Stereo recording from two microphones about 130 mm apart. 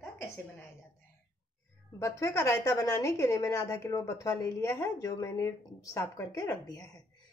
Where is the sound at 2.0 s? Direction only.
25° left (ahead or behind).